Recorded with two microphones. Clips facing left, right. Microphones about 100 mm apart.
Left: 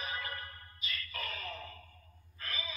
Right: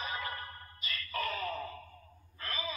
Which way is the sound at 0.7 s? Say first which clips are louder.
Right 6 dB; 40° right (ahead or behind).